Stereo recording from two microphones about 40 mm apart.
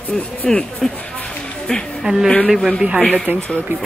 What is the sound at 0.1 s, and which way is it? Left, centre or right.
Speech, centre.